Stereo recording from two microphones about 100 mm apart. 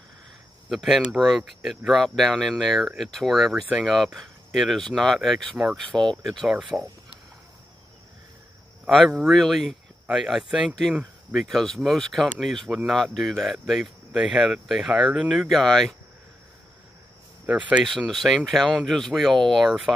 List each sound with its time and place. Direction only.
0.7 s speech: 5° right (ahead or behind)
6.7 s speech: 25° right (ahead or behind)
8.8 s speech: 5° right (ahead or behind)
17.5 s speech: 15° right (ahead or behind)
17.8 s speech: centre (ahead or behind)